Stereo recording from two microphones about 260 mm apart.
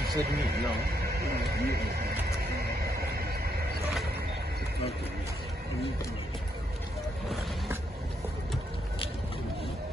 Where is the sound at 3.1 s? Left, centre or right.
Right.